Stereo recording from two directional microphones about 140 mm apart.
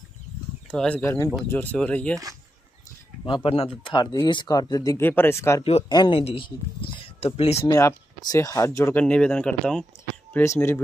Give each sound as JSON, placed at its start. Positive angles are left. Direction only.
{"t": 0.7, "sound": "speech", "side_deg": 10}
{"t": 3.3, "sound": "speech", "side_deg": 40}
{"t": 3.8, "sound": "speech", "side_deg": 30}
{"t": 5.0, "sound": "speech", "side_deg": 15}
{"t": 5.6, "sound": "speech", "side_deg": 45}
{"t": 5.9, "sound": "speech", "side_deg": 30}
{"t": 7.6, "sound": "speech", "side_deg": 25}
{"t": 9.0, "sound": "speech", "side_deg": 5}
{"t": 10.3, "sound": "speech", "side_deg": 20}